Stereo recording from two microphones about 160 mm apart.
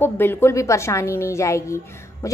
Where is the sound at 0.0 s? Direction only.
15° left (ahead or behind).